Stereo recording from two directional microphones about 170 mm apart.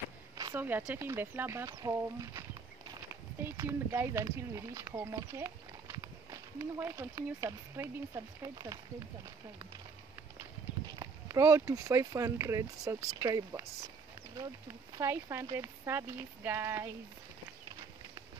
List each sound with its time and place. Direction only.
0.6 s speech: 10° right (ahead or behind)
3.4 s speech: 15° right (ahead or behind)
11.0 s speech: 20° right (ahead or behind)
15.0 s speech: 15° right (ahead or behind)